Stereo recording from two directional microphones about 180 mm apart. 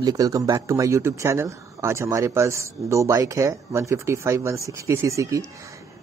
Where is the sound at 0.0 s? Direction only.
20° right (ahead or behind).